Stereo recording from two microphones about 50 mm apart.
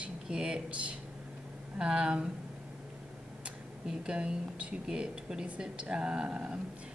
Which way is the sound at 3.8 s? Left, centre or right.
Centre.